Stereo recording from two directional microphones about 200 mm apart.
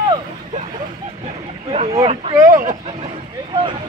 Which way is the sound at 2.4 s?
15° right (ahead or behind).